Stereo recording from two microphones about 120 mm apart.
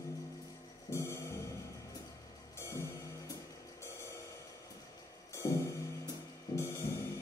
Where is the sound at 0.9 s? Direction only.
25° left (ahead or behind).